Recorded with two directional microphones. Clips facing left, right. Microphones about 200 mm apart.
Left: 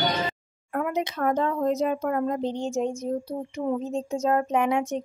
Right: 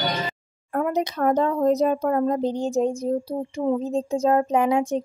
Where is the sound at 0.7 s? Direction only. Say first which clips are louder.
Right 4 dB; 35° right (ahead or behind).